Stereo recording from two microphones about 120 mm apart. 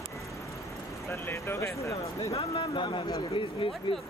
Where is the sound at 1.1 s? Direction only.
20° left (ahead or behind).